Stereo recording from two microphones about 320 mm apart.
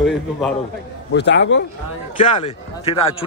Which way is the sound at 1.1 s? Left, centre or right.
Left.